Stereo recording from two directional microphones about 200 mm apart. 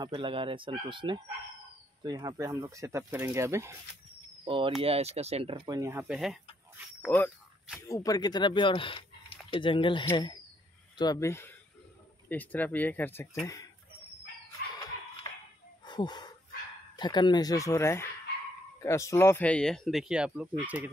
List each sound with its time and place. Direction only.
0.0 s speech: 25° right (ahead or behind)
4.5 s speech: 25° right (ahead or behind)
6.0 s speech: centre (ahead or behind)
15.8 s a sound: 20° left (ahead or behind)
16.9 s speech: 20° left (ahead or behind); by 20.9 s 5° right (ahead or behind)